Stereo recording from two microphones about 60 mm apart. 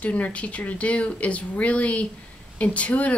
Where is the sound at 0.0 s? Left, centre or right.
Left.